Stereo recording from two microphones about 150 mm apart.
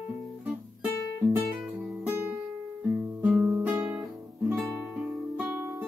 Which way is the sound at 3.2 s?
Centre (ahead or behind).